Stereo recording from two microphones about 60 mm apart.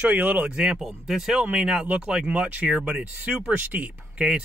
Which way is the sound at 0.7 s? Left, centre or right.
Centre.